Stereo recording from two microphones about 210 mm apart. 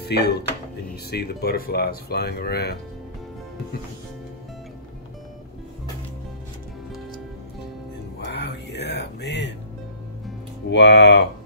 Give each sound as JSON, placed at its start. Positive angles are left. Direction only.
{"t": 0.0, "sound": "speech", "side_deg": 50}
{"t": 8.2, "sound": "music", "side_deg": 55}
{"t": 10.7, "sound": "speech", "side_deg": 55}